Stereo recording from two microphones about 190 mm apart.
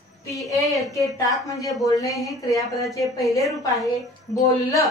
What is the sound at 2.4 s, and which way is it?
Speech, 15° left (ahead or behind).